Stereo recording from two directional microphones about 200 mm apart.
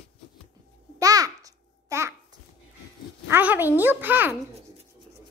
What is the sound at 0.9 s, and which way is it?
Babbling, 15° right (ahead or behind).